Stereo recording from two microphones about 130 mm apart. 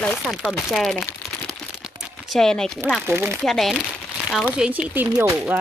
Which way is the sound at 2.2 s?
5° left (ahead or behind).